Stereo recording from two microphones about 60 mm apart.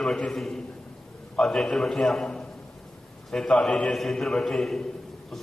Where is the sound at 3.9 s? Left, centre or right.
Centre.